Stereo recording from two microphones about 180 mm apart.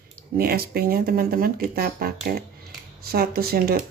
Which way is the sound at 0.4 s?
55° right (ahead or behind).